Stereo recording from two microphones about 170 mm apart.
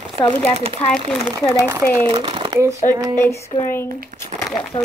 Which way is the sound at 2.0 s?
30° right (ahead or behind).